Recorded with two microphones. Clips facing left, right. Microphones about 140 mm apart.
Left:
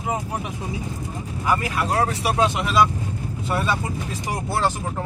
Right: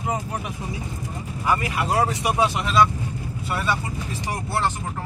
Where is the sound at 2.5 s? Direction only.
5° left (ahead or behind).